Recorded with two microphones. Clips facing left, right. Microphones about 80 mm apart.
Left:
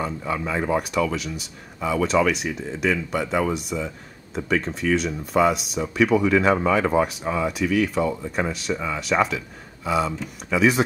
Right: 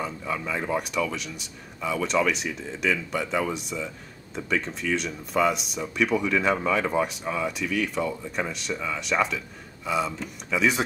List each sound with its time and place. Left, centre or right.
0.2 s speech: centre
8.7 s speech: centre
9.0 s speech: centre